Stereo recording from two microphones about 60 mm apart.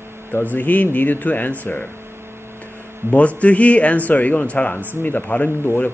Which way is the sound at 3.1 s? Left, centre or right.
Left.